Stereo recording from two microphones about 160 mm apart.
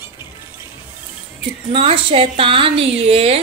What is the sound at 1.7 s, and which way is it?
A woman's voice, 35° right (ahead or behind).